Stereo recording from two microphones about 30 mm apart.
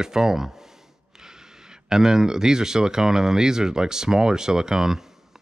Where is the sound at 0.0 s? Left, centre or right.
Centre.